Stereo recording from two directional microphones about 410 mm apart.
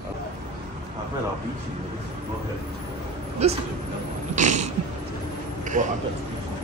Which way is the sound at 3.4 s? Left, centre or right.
Centre.